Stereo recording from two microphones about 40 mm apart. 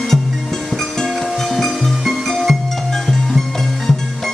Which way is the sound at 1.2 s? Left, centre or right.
Centre.